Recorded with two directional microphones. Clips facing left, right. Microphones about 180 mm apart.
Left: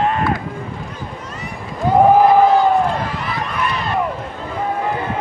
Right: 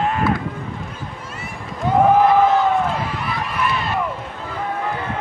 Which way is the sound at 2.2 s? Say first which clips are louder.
Left 3 dB; 35° left (ahead or behind).